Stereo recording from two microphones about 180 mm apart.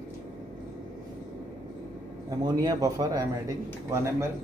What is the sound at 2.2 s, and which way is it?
A man's voice, 20° right (ahead or behind).